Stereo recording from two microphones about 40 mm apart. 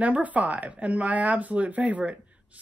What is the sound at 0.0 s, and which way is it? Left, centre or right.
Speech, right.